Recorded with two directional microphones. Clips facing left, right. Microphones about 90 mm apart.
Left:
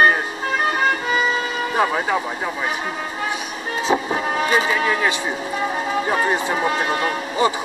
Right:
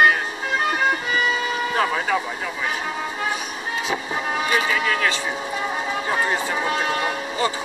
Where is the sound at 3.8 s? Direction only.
30° left (ahead or behind).